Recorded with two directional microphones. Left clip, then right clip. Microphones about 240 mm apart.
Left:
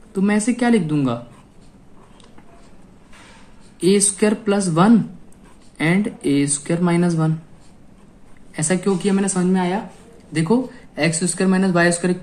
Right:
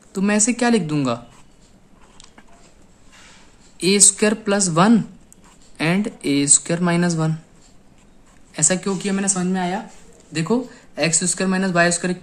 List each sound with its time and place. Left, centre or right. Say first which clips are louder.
0.1 s speech: even; right
3.8 s speech: even; right
8.5 s speech: left 1 dB; centre